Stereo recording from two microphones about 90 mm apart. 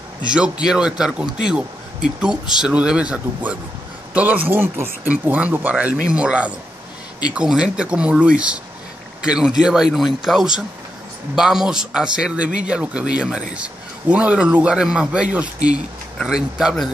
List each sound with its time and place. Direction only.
0.7 s a man's voice: 10° right (ahead or behind)